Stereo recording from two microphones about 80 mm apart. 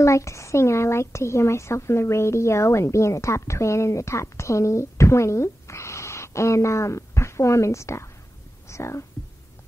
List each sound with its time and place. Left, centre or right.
0.0 s speech: left